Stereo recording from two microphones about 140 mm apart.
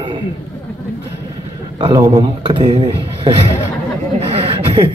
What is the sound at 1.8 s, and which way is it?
A man's voice, 25° right (ahead or behind).